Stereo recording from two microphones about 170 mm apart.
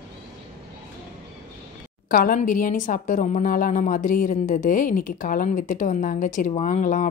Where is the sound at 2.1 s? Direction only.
55° left (ahead or behind).